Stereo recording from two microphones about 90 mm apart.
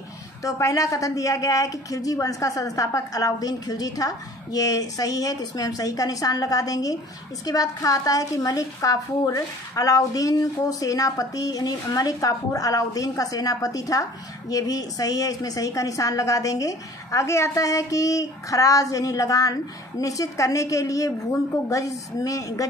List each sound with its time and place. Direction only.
0.4 s a woman's voice: 35° left (ahead or behind)